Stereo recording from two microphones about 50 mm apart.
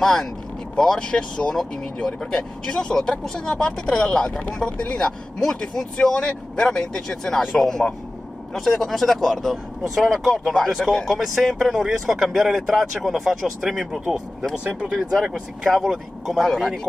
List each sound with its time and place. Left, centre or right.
0.0 s speech: centre
15.6 s speech: centre